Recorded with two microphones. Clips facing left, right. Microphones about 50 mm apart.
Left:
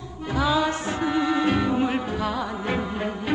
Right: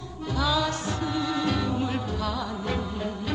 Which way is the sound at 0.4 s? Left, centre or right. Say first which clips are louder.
Left 4 dB; left.